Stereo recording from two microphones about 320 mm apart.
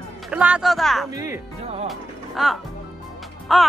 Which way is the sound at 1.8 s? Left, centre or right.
Centre.